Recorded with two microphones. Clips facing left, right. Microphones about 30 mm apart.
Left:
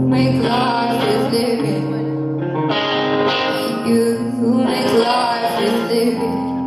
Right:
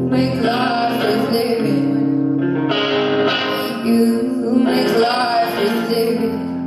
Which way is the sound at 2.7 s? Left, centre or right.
Left.